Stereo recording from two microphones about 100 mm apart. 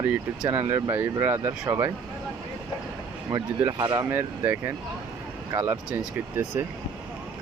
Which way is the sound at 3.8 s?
40° right (ahead or behind).